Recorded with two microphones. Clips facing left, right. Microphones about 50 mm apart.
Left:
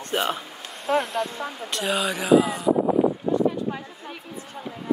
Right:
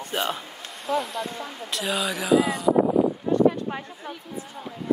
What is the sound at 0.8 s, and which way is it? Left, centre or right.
Speech, left.